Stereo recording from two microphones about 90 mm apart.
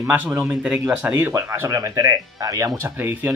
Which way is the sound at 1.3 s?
35° right (ahead or behind).